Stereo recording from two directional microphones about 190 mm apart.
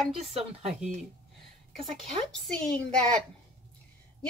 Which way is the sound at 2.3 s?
5° left (ahead or behind).